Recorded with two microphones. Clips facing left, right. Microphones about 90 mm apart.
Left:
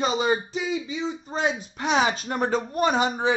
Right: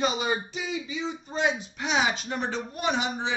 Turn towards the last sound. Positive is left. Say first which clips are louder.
# left 6 dB
turn(degrees=45)  # may be behind; listen again after turning